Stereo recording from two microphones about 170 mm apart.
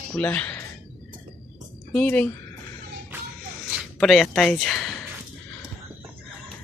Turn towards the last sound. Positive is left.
turn(degrees=5)  # may be behind; listen again after turning